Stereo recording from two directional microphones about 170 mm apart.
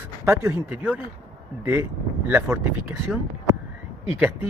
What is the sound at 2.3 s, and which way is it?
A man's voice, 10° right (ahead or behind).